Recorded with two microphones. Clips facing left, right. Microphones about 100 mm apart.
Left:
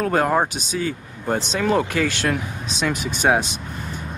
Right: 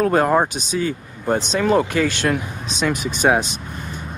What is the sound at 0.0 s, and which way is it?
Speech, 15° right (ahead or behind).